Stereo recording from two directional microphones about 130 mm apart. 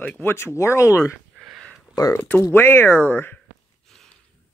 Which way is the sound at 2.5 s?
15° left (ahead or behind).